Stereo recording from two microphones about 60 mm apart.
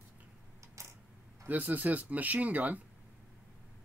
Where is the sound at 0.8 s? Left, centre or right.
Right.